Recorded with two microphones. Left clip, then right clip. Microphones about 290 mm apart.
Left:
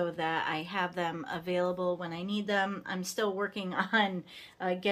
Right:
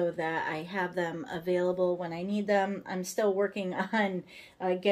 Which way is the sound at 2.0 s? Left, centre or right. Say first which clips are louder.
Right 2 dB; left.